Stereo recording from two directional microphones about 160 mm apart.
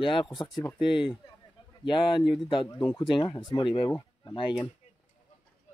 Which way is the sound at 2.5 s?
30° left (ahead or behind).